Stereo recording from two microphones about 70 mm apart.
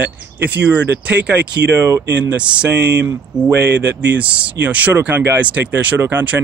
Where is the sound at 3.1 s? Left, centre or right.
Right.